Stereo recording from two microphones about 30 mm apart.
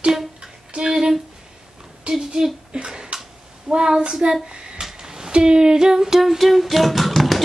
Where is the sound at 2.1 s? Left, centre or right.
Right.